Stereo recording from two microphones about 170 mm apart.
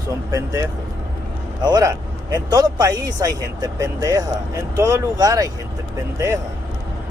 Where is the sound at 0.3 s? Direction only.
20° right (ahead or behind).